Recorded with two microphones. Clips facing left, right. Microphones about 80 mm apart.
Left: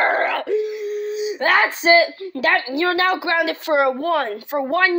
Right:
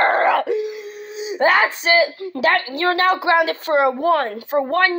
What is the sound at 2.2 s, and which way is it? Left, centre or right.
Speech, right.